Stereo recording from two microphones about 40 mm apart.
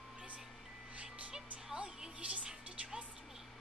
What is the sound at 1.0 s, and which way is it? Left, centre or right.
Music, centre.